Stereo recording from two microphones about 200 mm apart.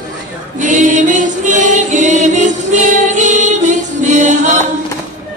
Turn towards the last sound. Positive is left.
turn(degrees=-35)  # may be behind; listen again after turning